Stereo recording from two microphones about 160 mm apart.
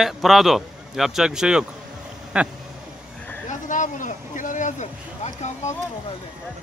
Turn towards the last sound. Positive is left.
turn(degrees=45)  # may be behind; listen again after turning